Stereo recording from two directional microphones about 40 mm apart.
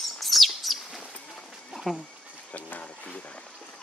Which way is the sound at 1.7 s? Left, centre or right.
Centre.